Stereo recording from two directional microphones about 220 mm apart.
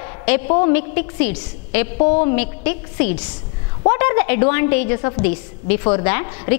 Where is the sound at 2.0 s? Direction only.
30° left (ahead or behind).